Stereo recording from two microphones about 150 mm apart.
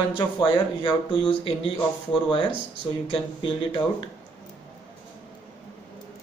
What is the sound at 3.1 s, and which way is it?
Speech, 35° left (ahead or behind).